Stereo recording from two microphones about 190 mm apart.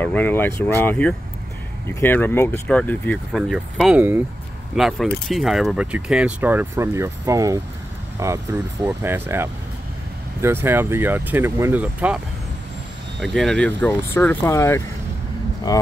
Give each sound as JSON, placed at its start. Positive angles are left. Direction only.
{"t": 0.0, "sound": "speech", "side_deg": 10}
{"t": 13.2, "sound": "speech", "side_deg": 0}